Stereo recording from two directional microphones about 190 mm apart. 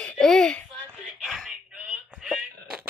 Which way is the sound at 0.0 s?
5° left (ahead or behind).